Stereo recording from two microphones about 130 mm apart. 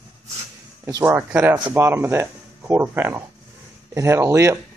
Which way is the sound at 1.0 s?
15° right (ahead or behind).